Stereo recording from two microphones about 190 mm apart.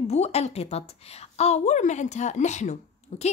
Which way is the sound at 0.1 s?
35° left (ahead or behind).